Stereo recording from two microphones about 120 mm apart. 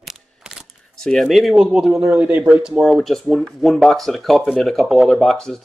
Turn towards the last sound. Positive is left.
turn(degrees=5)  # may be behind; listen again after turning